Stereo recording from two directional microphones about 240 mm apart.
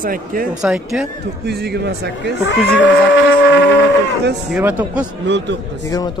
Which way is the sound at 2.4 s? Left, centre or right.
Left.